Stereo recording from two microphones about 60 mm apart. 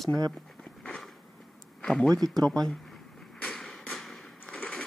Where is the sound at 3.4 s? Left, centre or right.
Centre.